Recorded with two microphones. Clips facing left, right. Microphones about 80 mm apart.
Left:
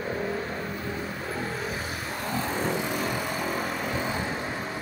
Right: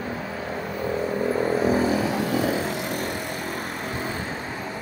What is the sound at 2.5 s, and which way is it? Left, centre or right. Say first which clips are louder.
Vehicle: right 2 dB; centre.